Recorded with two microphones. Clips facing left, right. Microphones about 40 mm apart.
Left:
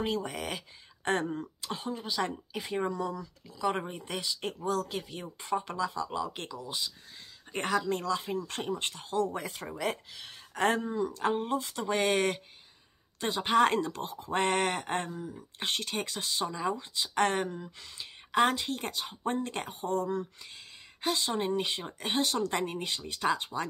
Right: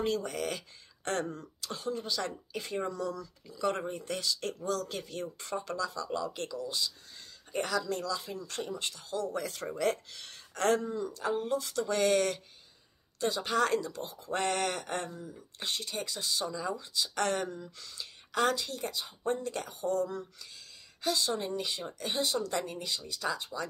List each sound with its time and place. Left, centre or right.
0.0 s speech: centre
1.0 s speech: left
1.9 s speech: centre
3.4 s speech: centre
3.7 s speech: centre
4.8 s speech: centre
7.5 s speech: left
9.6 s speech: centre
11.0 s speech: left
14.3 s speech: left
18.8 s speech: left